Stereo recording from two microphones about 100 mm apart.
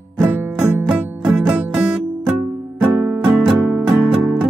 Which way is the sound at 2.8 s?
20° right (ahead or behind).